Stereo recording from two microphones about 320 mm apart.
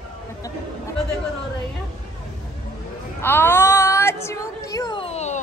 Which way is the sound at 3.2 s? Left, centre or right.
Centre.